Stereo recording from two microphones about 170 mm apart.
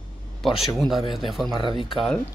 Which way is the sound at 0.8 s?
Centre (ahead or behind).